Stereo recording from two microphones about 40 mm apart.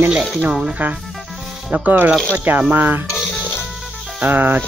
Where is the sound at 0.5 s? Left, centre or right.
Centre.